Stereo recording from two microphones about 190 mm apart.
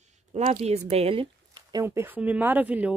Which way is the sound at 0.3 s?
35° right (ahead or behind).